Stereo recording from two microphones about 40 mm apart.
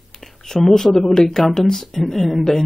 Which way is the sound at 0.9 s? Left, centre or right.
Centre.